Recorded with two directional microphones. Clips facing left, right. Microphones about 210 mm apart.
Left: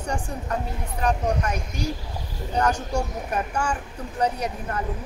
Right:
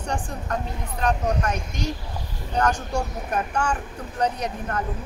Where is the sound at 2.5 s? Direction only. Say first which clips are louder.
Even; 10° left (ahead or behind).